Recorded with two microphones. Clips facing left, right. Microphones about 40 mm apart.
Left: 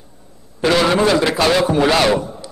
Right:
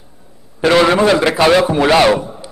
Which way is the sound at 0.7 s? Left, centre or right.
Centre.